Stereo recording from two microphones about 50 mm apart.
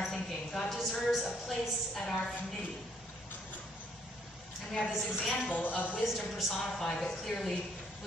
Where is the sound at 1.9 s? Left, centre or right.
Centre.